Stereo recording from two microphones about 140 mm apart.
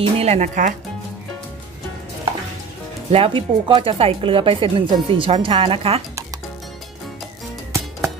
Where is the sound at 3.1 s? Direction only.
40° right (ahead or behind).